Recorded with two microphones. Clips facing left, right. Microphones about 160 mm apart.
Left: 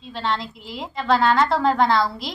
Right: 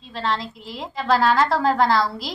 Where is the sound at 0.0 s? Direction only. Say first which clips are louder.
Even; centre (ahead or behind).